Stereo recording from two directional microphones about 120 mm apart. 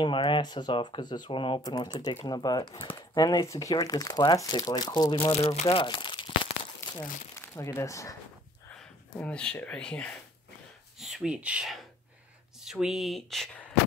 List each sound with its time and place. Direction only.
0.0 s speech: 45° left (ahead or behind)
1.6 s speech: 35° left (ahead or behind)
5.3 s speech: 60° left (ahead or behind); by 6.5 s 45° left (ahead or behind)
7.3 s speech: 25° left (ahead or behind)
9.1 s speech: 10° left (ahead or behind); by 11.8 s 5° right (ahead or behind)
12.8 s speech: centre (ahead or behind)